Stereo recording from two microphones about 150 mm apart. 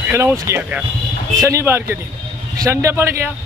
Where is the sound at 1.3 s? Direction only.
20° right (ahead or behind).